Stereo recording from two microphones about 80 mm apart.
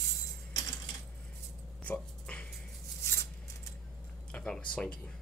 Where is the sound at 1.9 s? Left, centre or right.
Centre.